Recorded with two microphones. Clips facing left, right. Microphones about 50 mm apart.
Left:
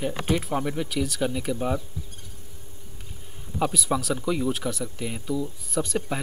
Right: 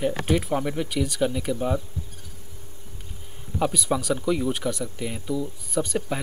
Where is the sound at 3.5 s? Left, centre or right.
Centre.